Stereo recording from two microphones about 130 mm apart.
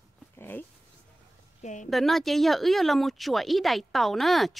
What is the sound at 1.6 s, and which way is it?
Speech, 65° left (ahead or behind).